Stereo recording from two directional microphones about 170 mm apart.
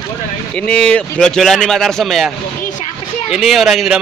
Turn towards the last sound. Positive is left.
turn(degrees=0)  # may be behind; listen again after turning